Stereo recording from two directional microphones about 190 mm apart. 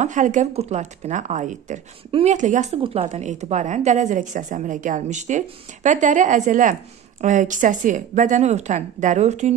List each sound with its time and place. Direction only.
0.0 s speech: 40° right (ahead or behind)
2.0 s speech: 30° right (ahead or behind)
2.3 s speech: 40° right (ahead or behind)